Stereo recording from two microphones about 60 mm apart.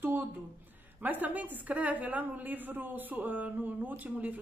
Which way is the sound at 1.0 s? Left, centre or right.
Right.